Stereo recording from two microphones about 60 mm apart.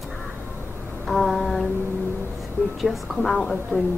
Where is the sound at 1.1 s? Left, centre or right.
Centre.